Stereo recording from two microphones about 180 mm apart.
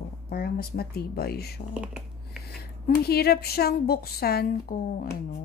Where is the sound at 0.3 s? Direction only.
60° left (ahead or behind).